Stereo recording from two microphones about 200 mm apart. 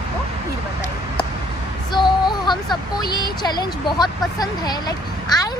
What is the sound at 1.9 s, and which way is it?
Speech, 20° left (ahead or behind).